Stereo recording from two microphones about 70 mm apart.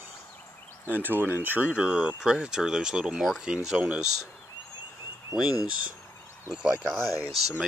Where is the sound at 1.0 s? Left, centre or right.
Right.